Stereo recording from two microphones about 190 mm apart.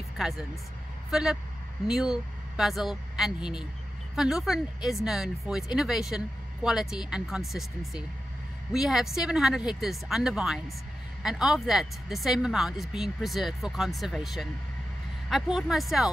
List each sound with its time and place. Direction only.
1.1 s speech: 5° right (ahead or behind)